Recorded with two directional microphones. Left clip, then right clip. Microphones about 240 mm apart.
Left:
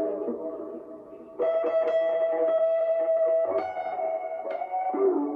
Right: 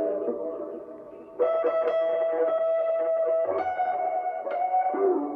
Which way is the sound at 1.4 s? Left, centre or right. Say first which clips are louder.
Right 1 dB; left.